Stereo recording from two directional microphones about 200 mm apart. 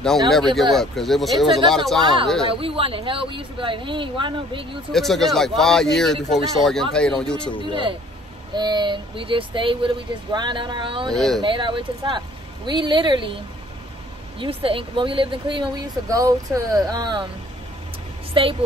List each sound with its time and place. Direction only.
0.3 s speech: centre (ahead or behind)
2.6 s speech: 25° right (ahead or behind)
4.9 s speech: centre (ahead or behind)
8.5 s speech: 20° right (ahead or behind)
11.1 s speech: centre (ahead or behind)
11.4 s speech: 25° right (ahead or behind)
14.4 s speech: 25° right (ahead or behind)
18.3 s a woman's voice: 25° right (ahead or behind)